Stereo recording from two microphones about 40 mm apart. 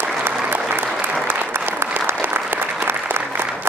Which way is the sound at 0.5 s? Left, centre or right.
Right.